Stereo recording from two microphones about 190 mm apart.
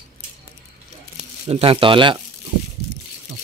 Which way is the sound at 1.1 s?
30° right (ahead or behind).